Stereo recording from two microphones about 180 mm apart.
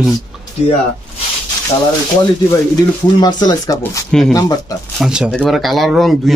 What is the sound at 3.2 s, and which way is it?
Speech, 20° left (ahead or behind).